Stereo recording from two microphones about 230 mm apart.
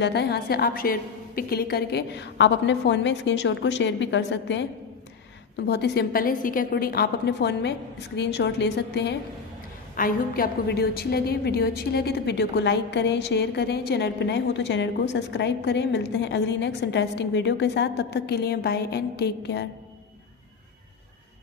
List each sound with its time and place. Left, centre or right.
0.0 s a woman's voice: left
5.7 s a woman's voice: left